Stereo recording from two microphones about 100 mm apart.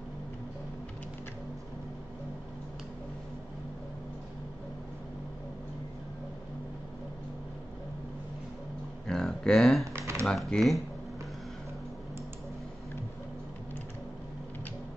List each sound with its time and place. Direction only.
9.0 s a sound: 5° left (ahead or behind)
9.9 s typing: 25° right (ahead or behind)
10.2 s speech: 5° left (ahead or behind)